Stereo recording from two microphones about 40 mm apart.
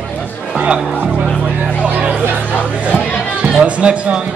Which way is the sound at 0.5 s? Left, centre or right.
Right.